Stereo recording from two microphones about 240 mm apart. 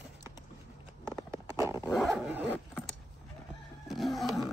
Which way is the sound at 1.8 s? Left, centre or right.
Centre.